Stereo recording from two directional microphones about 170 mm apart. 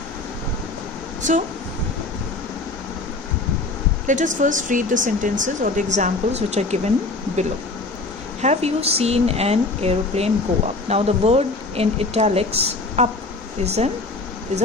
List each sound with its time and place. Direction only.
1.2 s speech: 45° right (ahead or behind)
4.1 s speech: 50° right (ahead or behind)
8.4 s speech: 40° right (ahead or behind)